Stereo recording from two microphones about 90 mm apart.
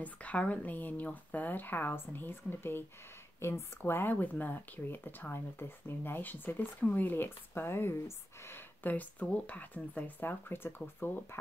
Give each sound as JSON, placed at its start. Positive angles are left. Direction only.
{"t": 0.0, "sound": "speech", "side_deg": 15}